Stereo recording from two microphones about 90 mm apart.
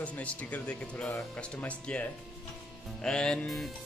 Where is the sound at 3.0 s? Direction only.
10° left (ahead or behind).